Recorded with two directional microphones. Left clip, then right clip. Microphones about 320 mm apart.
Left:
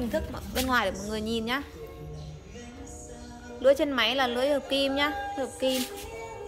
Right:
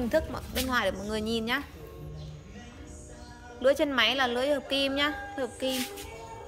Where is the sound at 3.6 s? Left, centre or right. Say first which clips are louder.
Left 1 dB; centre.